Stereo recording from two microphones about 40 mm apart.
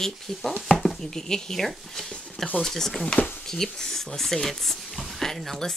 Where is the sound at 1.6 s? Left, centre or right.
Centre.